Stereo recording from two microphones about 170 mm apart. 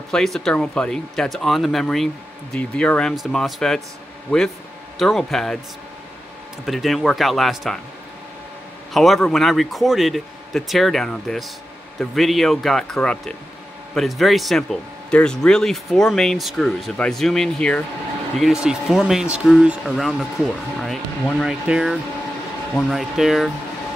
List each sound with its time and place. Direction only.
0.1 s speech: centre (ahead or behind)
6.6 s speech: centre (ahead or behind)
8.9 s speech: centre (ahead or behind)